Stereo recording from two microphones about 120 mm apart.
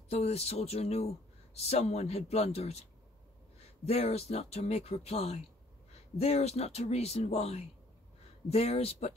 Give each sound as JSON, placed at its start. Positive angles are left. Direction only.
{"t": 0.1, "sound": "speech", "side_deg": 60}
{"t": 3.8, "sound": "speech", "side_deg": 55}